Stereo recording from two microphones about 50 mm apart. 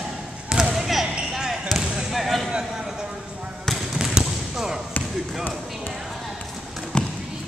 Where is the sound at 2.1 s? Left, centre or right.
Centre.